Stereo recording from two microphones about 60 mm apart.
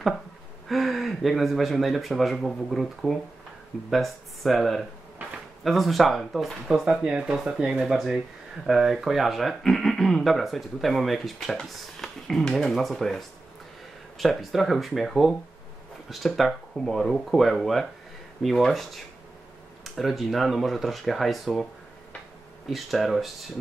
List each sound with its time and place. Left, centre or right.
0.7 s speech: centre
22.7 s speech: centre